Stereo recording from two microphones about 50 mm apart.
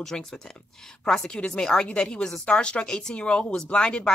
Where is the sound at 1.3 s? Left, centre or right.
Left.